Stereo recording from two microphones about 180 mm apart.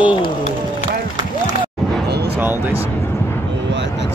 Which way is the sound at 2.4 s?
10° right (ahead or behind).